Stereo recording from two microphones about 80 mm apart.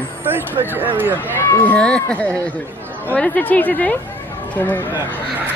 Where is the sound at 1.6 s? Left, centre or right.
Centre.